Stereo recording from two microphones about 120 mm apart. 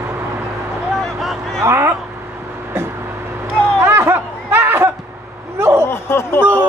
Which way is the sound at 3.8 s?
20° right (ahead or behind).